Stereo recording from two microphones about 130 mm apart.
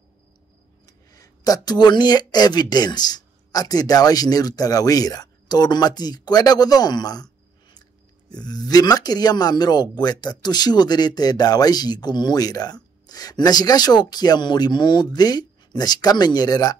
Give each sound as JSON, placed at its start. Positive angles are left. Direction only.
{"t": 0.8, "sound": "speech", "side_deg": 30}